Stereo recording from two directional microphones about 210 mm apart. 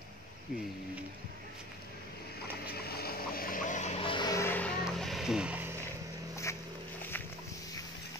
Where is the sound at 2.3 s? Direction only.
50° left (ahead or behind); by 5.9 s 10° right (ahead or behind).